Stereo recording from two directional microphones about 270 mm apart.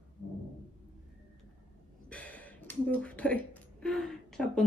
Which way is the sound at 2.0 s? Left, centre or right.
Centre.